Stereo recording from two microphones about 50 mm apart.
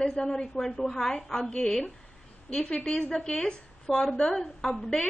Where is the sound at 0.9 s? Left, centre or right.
Centre.